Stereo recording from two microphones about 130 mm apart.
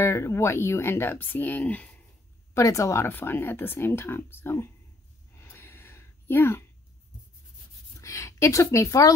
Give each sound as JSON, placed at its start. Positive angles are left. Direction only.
{"t": 0.0, "sound": "speech", "side_deg": 20}
{"t": 2.5, "sound": "speech", "side_deg": 25}
{"t": 5.3, "sound": "a sound", "side_deg": 20}
{"t": 8.0, "sound": "a woman's voice", "side_deg": 25}